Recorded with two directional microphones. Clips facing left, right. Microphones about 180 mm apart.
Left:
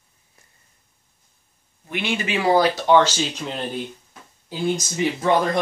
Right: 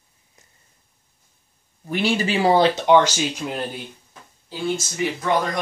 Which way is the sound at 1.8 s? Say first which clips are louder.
Right 4 dB; 35° right (ahead or behind).